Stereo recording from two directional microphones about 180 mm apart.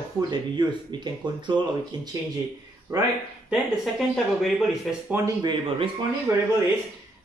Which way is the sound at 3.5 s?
Centre (ahead or behind).